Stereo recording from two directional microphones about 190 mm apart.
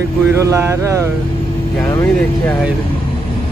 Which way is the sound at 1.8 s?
10° left (ahead or behind).